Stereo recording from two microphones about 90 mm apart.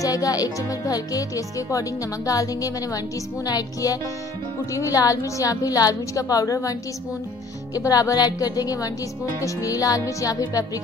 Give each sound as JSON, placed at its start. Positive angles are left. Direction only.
{"t": 0.0, "sound": "speech", "side_deg": 45}